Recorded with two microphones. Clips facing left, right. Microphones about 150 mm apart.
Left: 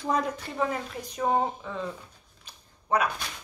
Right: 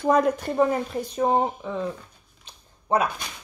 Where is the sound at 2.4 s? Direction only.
25° right (ahead or behind).